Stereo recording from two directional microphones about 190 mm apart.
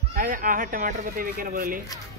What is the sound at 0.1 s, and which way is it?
Speech, 45° right (ahead or behind).